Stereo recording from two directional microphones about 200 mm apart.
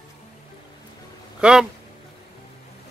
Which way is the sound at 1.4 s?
5° right (ahead or behind).